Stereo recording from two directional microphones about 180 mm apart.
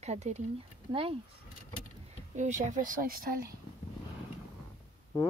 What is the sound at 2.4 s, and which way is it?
Speech, 45° right (ahead or behind).